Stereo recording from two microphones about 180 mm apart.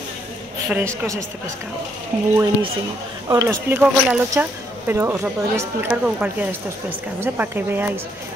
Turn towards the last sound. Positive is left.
turn(degrees=-10)  # may be behind; listen again after turning